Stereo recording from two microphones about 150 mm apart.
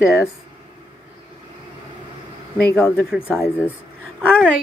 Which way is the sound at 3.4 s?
20° left (ahead or behind).